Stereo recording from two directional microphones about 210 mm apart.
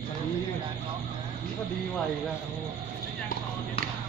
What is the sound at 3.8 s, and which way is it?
Basketball bounce, 25° left (ahead or behind).